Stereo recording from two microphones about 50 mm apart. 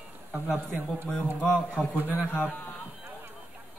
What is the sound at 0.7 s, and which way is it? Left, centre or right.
Speech, right.